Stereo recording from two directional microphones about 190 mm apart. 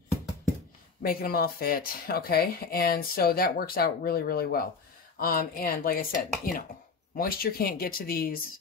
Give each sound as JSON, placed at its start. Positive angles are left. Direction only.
{"t": 1.0, "sound": "speech", "side_deg": 55}